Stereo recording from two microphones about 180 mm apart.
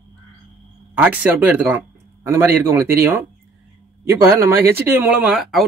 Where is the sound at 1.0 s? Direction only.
10° right (ahead or behind).